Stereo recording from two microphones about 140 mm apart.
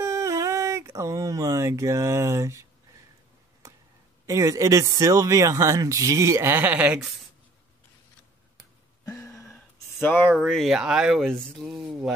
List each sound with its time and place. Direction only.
0.0 s a sound: 20° right (ahead or behind)
4.3 s speech: 20° right (ahead or behind); by 7.2 s 5° right (ahead or behind)
9.0 s speech: 25° left (ahead or behind); by 12.1 s 5° right (ahead or behind)